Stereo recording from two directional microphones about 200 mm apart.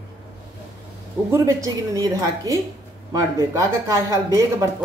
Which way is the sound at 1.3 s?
15° right (ahead or behind).